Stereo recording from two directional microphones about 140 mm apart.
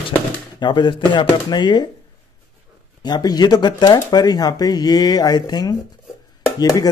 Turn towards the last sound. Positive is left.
turn(degrees=25)  # may be behind; listen again after turning